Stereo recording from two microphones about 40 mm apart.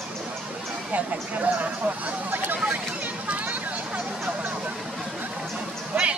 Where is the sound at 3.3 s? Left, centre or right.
Right.